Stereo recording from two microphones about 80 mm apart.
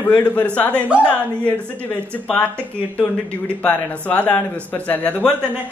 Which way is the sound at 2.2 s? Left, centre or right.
Centre.